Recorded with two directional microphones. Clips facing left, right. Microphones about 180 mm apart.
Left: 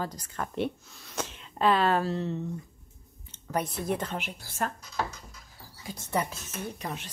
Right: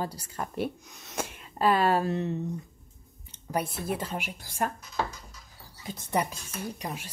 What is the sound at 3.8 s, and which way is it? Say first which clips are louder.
Speech: left 1 dB; 5° right (ahead or behind).